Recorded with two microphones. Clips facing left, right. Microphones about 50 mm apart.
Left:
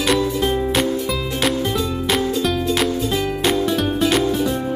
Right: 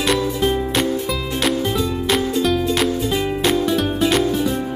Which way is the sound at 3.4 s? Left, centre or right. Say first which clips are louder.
Right 1 dB; centre.